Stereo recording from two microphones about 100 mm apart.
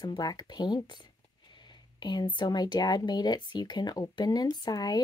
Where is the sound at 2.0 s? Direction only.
45° left (ahead or behind).